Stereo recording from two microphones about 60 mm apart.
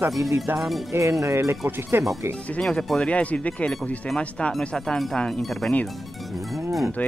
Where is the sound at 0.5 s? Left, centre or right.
Centre.